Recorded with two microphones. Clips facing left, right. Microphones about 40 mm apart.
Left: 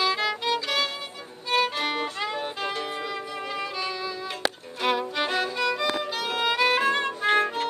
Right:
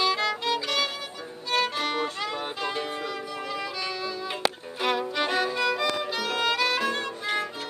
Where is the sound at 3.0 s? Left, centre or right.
Centre.